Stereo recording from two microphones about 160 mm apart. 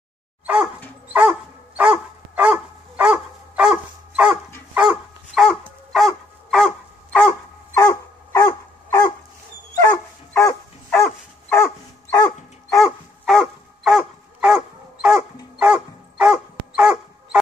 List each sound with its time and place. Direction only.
1.8 s dog: 5° right (ahead or behind)
7.7 s dog: 20° left (ahead or behind)
12.7 s dog: centre (ahead or behind)